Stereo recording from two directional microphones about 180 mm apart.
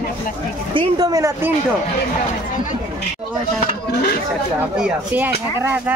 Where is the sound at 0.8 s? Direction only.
20° right (ahead or behind).